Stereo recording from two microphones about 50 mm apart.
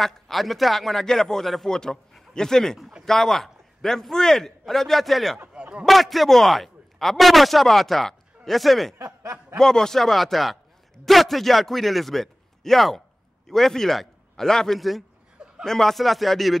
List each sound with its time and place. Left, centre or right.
0.0 s a man's voice: centre
5.5 s a sound: right
5.9 s a man's voice: centre
8.9 s snicker: right
9.6 s a man's voice: centre
14.8 s speech: centre
15.3 s a sound: centre
15.6 s speech: centre